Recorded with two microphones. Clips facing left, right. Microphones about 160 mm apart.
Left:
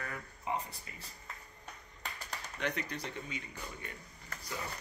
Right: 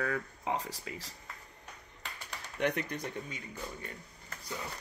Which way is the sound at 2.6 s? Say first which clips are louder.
Right 5 dB; 50° right (ahead or behind).